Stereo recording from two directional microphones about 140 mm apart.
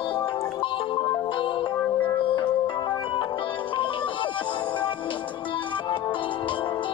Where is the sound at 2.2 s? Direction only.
40° left (ahead or behind).